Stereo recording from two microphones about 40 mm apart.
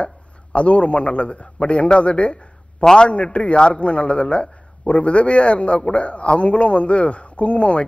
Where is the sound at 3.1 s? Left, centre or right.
Left.